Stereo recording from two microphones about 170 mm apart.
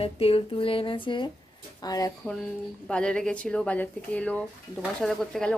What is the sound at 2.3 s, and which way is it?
A woman's voice, 5° left (ahead or behind).